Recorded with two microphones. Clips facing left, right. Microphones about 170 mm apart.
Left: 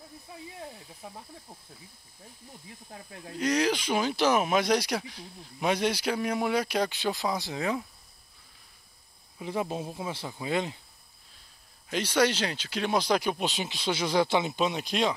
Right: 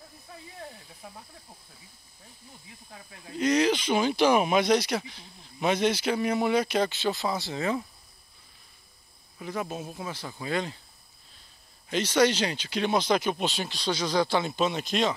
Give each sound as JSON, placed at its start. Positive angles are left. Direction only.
{"t": 0.3, "sound": "snake", "side_deg": 15}
{"t": 3.4, "sound": "speech", "side_deg": 10}
{"t": 9.4, "sound": "speech", "side_deg": 25}
{"t": 11.9, "sound": "speech", "side_deg": 10}
{"t": 14.1, "sound": "speech", "side_deg": 20}
{"t": 14.4, "sound": "speech", "side_deg": 5}